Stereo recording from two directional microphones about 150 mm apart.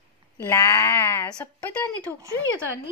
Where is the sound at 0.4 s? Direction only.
15° left (ahead or behind).